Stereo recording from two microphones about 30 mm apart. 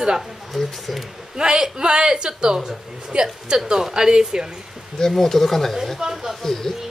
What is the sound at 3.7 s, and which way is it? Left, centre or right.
Speech, centre.